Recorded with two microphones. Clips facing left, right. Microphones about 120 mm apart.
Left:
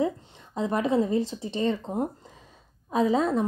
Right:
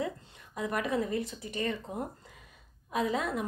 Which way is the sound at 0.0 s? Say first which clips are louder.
Left 8 dB; 30° left (ahead or behind).